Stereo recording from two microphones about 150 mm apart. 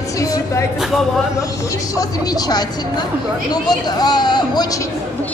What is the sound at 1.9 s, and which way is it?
Speech, 25° left (ahead or behind).